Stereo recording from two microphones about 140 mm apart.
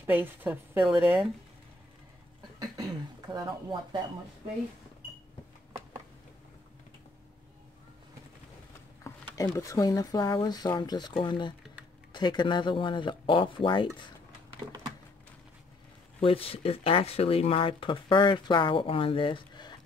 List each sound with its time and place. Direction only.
0.0 s a woman's voice: 15° right (ahead or behind)
2.6 s speech: 30° right (ahead or behind)
9.3 s speech: 20° left (ahead or behind)
16.2 s speech: 40° left (ahead or behind)